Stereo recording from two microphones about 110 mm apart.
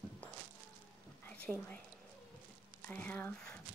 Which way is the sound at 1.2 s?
10° left (ahead or behind).